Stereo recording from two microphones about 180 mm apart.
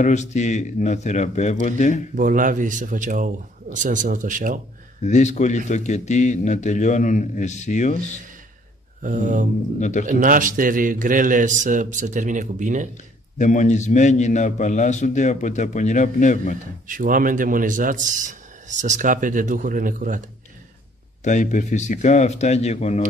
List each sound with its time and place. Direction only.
0.0 s a man's voice: 40° left (ahead or behind)
2.1 s a man's voice: 45° right (ahead or behind)
5.0 s a man's voice: 40° left (ahead or behind)
9.0 s a man's voice: 45° right (ahead or behind)
9.8 s a man's voice: 40° left (ahead or behind)
10.0 s a man's voice: 50° right (ahead or behind)
13.4 s a man's voice: 40° left (ahead or behind)
16.8 s a man's voice: 50° right (ahead or behind)
21.2 s a man's voice: 45° left (ahead or behind)